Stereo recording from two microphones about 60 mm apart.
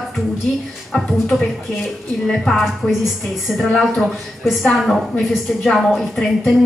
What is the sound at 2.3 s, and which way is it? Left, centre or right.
Speech, centre.